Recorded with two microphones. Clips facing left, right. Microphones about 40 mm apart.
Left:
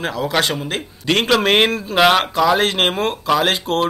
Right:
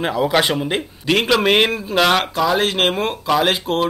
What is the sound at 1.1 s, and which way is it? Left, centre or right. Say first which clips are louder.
Speech: even; centre.